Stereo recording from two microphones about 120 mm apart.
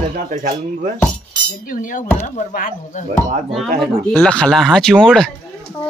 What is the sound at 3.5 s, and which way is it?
Speech, centre (ahead or behind).